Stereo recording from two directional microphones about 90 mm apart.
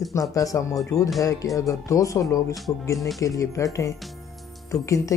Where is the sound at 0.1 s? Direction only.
40° left (ahead or behind).